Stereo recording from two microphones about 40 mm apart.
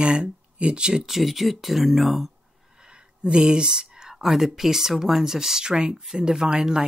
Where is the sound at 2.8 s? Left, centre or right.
Right.